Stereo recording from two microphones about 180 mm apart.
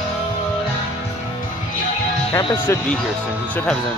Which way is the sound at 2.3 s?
20° left (ahead or behind).